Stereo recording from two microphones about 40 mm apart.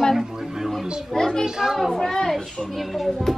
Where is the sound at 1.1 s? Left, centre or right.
Centre.